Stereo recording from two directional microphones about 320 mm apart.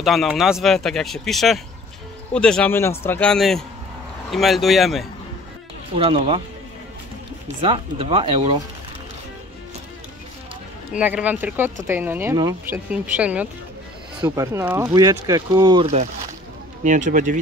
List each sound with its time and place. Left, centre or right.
0.0 s speech: centre
5.9 s speech: centre
7.4 s speech: centre
10.9 s speech: centre; by 17.4 s right